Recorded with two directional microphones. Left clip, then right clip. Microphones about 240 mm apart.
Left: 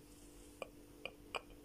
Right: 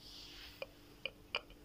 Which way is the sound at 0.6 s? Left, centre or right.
Centre.